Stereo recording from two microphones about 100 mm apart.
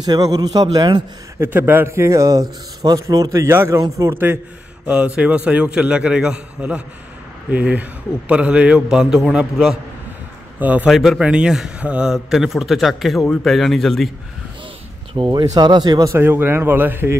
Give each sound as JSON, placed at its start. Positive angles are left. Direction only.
{"t": 0.0, "sound": "speech", "side_deg": -40}
{"t": 1.4, "sound": "speech", "side_deg": -20}
{"t": 4.8, "sound": "a man's voice", "side_deg": -15}
{"t": 10.6, "sound": "a man's voice", "side_deg": -15}
{"t": 10.9, "sound": "a man's voice", "side_deg": 0}
{"t": 15.1, "sound": "speech", "side_deg": -50}
{"t": 16.1, "sound": "speech", "side_deg": -20}